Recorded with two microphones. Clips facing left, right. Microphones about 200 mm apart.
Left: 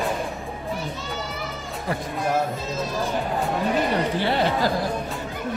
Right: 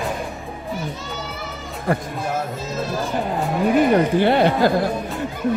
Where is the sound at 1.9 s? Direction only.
55° right (ahead or behind).